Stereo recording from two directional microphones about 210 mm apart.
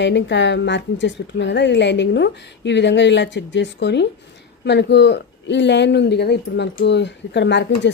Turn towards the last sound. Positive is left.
turn(degrees=55)  # may be behind; listen again after turning